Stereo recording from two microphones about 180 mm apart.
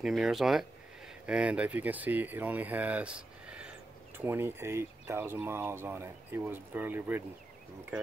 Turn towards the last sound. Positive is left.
turn(degrees=-10)  # may be behind; listen again after turning